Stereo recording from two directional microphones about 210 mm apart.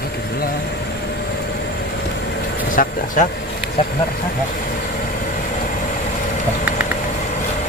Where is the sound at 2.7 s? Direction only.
40° left (ahead or behind).